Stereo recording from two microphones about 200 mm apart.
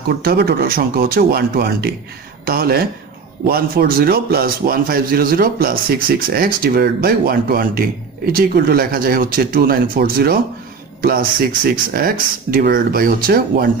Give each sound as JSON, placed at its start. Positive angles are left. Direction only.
{"t": 0.2, "sound": "a man's voice", "side_deg": -50}